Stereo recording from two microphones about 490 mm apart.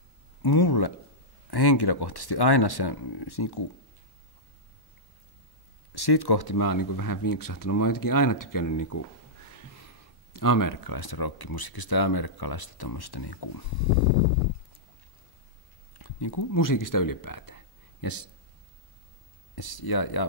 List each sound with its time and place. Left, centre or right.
0.4 s speech: left
5.9 s speech: left
10.3 s speech: left
15.9 s speech: left
19.5 s speech: left